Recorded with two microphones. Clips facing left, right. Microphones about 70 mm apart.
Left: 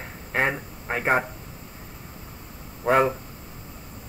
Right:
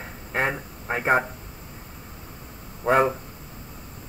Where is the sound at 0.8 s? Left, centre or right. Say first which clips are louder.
Right 1 dB; right.